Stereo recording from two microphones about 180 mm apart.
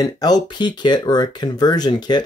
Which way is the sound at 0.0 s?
20° left (ahead or behind).